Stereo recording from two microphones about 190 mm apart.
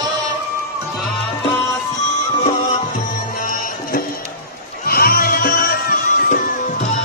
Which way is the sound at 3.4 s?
45° left (ahead or behind).